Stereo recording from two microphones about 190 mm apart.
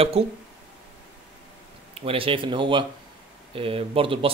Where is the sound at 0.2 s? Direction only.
30° right (ahead or behind).